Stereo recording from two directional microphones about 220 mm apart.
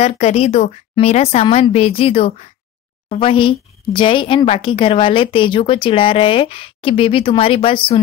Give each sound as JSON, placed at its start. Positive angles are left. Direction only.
{"t": 0.0, "sound": "a woman's voice", "side_deg": 30}